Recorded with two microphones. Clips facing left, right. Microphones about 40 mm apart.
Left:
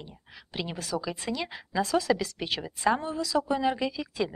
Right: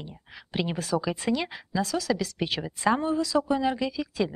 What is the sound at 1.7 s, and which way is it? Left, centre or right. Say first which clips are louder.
Speech: left 2 dB; left.